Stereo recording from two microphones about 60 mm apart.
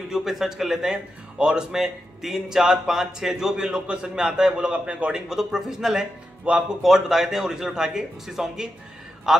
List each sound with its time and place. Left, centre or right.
0.1 s a man's voice: centre
6.5 s speech: right
6.8 s a man's voice: centre